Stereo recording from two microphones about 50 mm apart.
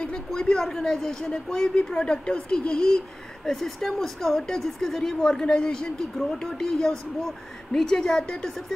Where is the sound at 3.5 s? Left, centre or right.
Centre.